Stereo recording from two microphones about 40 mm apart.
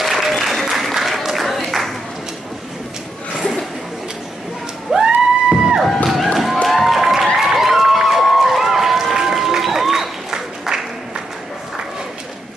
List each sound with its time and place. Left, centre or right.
0.0 s applause: centre
4.9 s music: centre
6.0 s thump: centre
6.7 s a sound: centre
7.3 s run: centre